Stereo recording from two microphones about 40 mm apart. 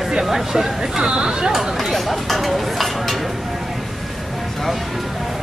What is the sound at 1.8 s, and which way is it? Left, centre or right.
Speech, centre.